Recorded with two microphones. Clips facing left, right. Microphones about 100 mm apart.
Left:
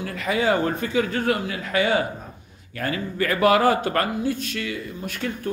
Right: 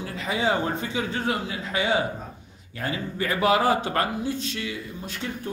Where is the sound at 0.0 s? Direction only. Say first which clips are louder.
Left 3 dB; 25° right (ahead or behind).